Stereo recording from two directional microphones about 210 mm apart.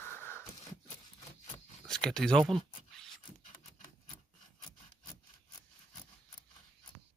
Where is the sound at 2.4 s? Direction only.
Centre (ahead or behind).